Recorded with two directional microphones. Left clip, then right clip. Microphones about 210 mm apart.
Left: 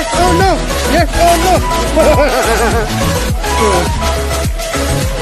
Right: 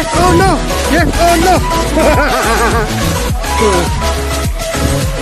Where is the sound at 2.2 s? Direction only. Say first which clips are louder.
Even; 20° right (ahead or behind).